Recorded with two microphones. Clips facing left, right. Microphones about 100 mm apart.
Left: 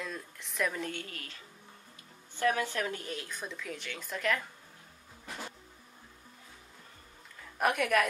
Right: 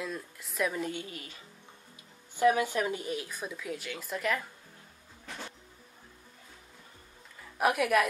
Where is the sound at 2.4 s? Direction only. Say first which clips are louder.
Right 5 dB; 10° right (ahead or behind).